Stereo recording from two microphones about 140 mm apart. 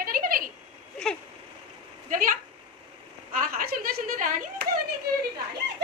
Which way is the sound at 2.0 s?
70° right (ahead or behind).